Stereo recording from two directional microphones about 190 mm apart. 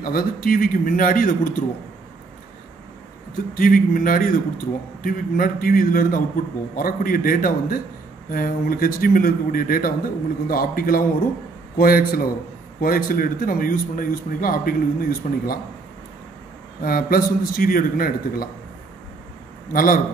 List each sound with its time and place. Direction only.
0.0 s a man's voice: 50° left (ahead or behind)
3.5 s a man's voice: 50° left (ahead or behind)
16.8 s a man's voice: 50° left (ahead or behind)
19.7 s a man's voice: 45° left (ahead or behind)